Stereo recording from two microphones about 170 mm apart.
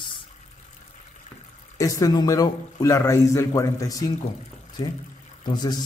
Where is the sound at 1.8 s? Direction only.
20° left (ahead or behind).